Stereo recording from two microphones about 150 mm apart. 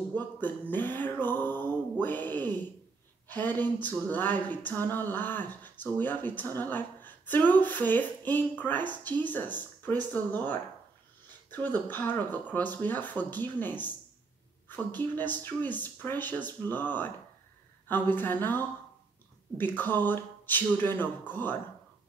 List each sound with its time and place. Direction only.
0.1 s music: 10° left (ahead or behind)
3.3 s speech: 10° left (ahead or behind)
14.9 s speech: 10° left (ahead or behind)